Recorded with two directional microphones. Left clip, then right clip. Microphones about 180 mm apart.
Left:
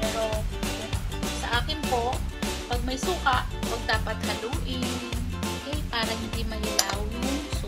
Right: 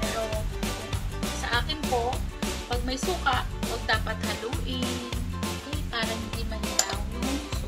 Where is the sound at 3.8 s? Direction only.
20° left (ahead or behind).